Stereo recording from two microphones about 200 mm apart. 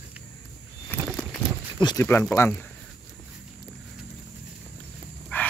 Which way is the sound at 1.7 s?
20° left (ahead or behind).